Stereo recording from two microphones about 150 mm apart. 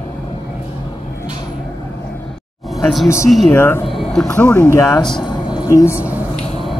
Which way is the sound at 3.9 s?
Centre (ahead or behind).